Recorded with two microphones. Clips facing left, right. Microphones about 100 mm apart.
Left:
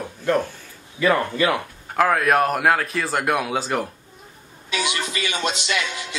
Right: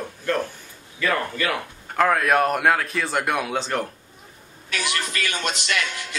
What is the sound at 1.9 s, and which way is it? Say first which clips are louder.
A man's voice: left 1 dB; centre (ahead or behind).